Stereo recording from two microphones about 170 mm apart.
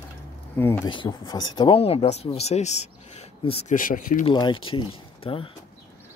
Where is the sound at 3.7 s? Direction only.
50° left (ahead or behind).